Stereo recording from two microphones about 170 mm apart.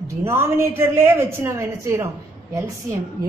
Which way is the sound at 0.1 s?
15° right (ahead or behind).